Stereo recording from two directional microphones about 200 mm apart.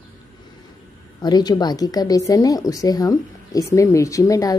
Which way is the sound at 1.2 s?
20° left (ahead or behind).